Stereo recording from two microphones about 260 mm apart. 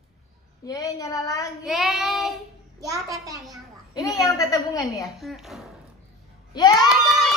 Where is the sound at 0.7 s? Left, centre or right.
Centre.